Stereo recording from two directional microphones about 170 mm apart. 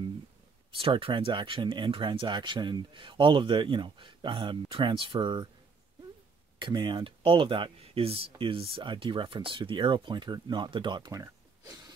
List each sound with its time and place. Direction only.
0.7 s speech: 30° right (ahead or behind)
6.6 s speech: 25° right (ahead or behind)